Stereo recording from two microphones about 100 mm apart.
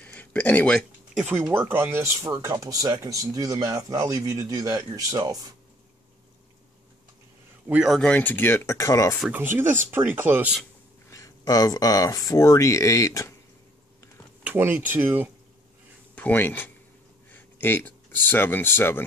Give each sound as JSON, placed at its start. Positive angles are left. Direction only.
{"t": 0.0, "sound": "a sound", "side_deg": 15}
{"t": 1.5, "sound": "speech", "side_deg": -20}
{"t": 7.6, "sound": "a man's voice", "side_deg": -10}
{"t": 7.9, "sound": "speech", "side_deg": 10}
{"t": 9.3, "sound": "speech", "side_deg": -20}
{"t": 11.1, "sound": "speech", "side_deg": 35}
{"t": 14.4, "sound": "speech", "side_deg": -20}
{"t": 16.2, "sound": "speech", "side_deg": 20}